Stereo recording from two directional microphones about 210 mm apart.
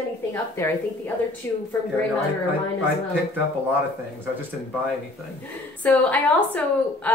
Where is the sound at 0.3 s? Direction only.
15° left (ahead or behind).